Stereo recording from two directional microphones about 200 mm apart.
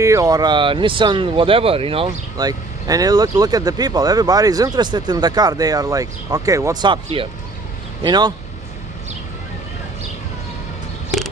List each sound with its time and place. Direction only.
0.0 s speech: 15° right (ahead or behind)